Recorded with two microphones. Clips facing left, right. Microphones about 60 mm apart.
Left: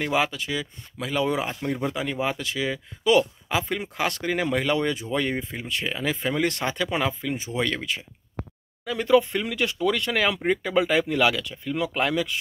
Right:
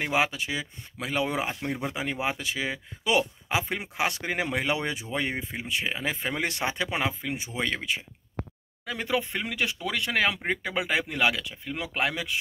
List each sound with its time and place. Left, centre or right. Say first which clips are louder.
0.0 s speech: left 2 dB; right